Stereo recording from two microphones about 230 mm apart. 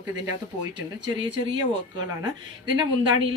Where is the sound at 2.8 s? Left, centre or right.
Right.